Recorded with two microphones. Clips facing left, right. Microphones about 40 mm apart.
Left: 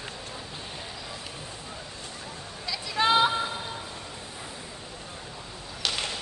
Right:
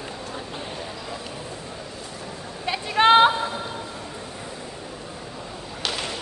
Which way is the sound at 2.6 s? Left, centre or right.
Right.